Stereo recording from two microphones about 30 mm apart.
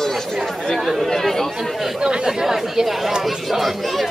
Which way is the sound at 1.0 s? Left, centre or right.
Centre.